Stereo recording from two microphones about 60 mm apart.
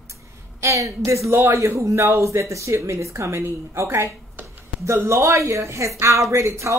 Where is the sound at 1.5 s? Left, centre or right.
Right.